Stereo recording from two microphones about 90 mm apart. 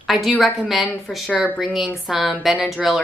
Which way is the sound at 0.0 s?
Centre (ahead or behind).